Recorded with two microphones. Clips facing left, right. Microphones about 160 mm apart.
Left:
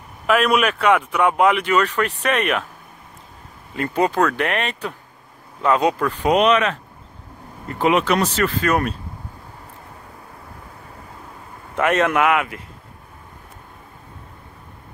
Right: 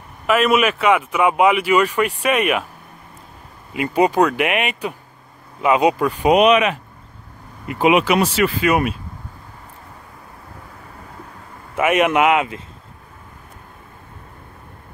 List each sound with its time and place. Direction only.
0.3 s speech: centre (ahead or behind)
3.7 s speech: 10° right (ahead or behind)
11.7 s speech: 10° right (ahead or behind)